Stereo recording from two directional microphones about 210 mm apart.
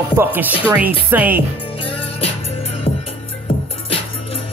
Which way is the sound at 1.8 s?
25° left (ahead or behind).